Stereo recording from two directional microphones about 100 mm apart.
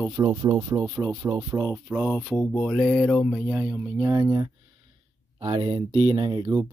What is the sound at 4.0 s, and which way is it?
Speech, 35° right (ahead or behind).